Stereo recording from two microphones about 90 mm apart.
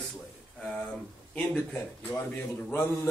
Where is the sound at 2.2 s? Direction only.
25° left (ahead or behind).